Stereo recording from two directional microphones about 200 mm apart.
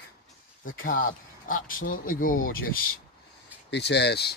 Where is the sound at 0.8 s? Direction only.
45° left (ahead or behind).